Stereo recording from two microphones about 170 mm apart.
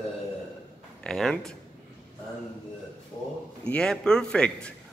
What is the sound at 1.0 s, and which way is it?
Speech, 5° left (ahead or behind).